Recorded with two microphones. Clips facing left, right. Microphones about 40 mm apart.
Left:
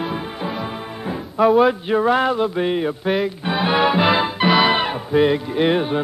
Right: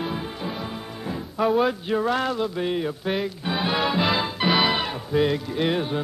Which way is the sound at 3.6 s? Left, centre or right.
Left.